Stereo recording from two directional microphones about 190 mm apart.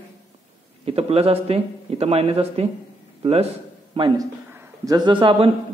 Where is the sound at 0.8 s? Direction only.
30° right (ahead or behind).